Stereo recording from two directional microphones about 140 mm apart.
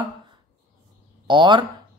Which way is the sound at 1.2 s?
35° right (ahead or behind).